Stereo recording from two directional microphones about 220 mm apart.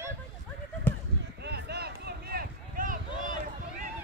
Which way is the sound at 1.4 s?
50° right (ahead or behind).